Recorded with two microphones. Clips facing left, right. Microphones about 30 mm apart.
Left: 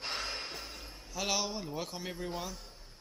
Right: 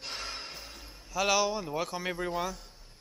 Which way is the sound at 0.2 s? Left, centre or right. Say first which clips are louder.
Left 1 dB; centre.